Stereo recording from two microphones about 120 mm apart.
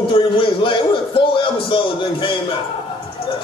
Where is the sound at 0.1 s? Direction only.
45° left (ahead or behind).